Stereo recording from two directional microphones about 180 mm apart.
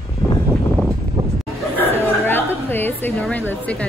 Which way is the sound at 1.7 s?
10° left (ahead or behind).